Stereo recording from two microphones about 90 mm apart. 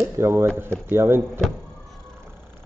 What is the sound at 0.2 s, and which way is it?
Speech, 30° right (ahead or behind).